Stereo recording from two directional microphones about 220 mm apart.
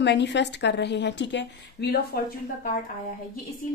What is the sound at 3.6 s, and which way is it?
Speech, 40° left (ahead or behind).